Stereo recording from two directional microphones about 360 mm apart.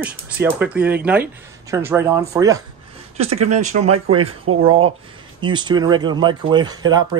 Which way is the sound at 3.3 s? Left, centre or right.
Right.